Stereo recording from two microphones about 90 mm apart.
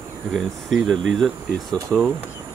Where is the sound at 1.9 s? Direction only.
15° right (ahead or behind).